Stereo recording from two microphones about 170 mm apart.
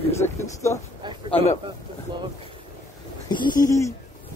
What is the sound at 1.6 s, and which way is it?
Speech, 25° right (ahead or behind).